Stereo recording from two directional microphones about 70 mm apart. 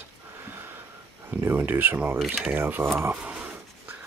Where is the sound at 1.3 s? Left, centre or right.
Right.